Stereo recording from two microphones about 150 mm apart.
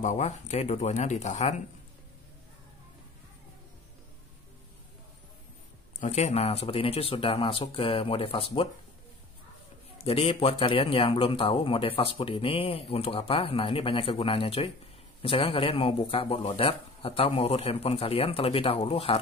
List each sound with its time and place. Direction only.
0.0 s speech: 50° left (ahead or behind)
5.9 s a man's voice: 50° left (ahead or behind)
9.9 s a man's voice: 40° left (ahead or behind)